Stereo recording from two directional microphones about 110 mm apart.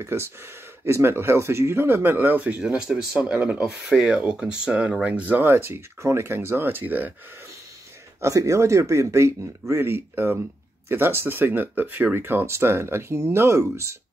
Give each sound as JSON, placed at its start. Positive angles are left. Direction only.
{"t": 0.0, "sound": "speech", "side_deg": -25}
{"t": 2.6, "sound": "speech", "side_deg": -5}
{"t": 8.2, "sound": "speech", "side_deg": -30}